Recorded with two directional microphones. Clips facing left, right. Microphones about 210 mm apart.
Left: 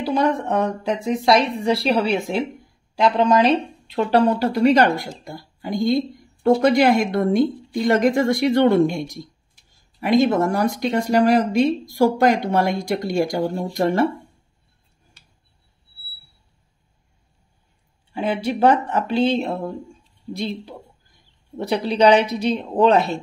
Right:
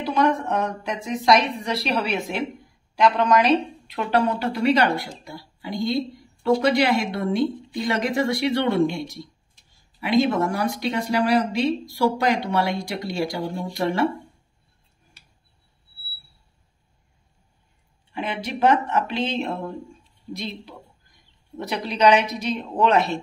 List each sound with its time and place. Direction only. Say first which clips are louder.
0.0 s speech: left 1 dB; 35° left (ahead or behind)
18.1 s speech: left 6 dB; 30° left (ahead or behind)